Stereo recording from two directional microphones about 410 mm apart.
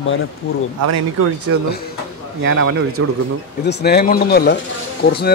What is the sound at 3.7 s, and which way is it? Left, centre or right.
Speech, left.